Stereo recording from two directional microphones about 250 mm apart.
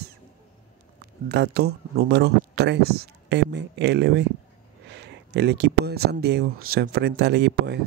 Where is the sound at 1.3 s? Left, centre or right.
Right.